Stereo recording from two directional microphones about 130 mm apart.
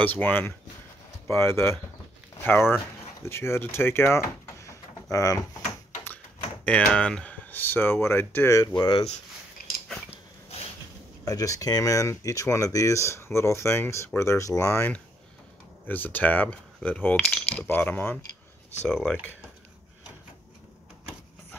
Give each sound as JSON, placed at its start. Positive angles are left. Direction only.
{"t": 0.0, "sound": "speech", "side_deg": 15}
{"t": 6.6, "sound": "speech", "side_deg": 10}
{"t": 8.7, "sound": "speech", "side_deg": 40}
{"t": 11.2, "sound": "speech", "side_deg": 25}
{"t": 15.9, "sound": "speech", "side_deg": 15}